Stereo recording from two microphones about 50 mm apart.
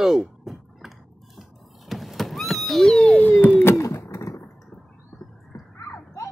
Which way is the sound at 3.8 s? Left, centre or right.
Left.